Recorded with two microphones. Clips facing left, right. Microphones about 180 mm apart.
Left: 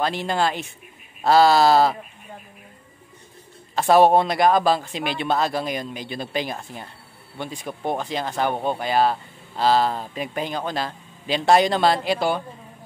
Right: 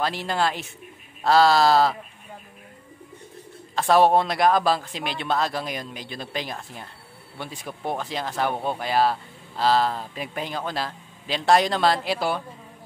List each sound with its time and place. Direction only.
0.0 s speech: centre (ahead or behind)
3.7 s speech: 5° left (ahead or behind)